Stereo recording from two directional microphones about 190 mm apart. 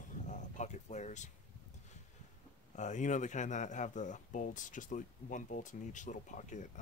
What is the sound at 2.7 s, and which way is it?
Speech, 40° left (ahead or behind).